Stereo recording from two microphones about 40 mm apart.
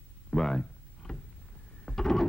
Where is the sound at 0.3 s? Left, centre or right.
Centre.